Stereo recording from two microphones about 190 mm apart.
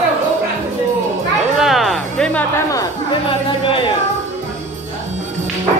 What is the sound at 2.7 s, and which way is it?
Chatter, 25° left (ahead or behind).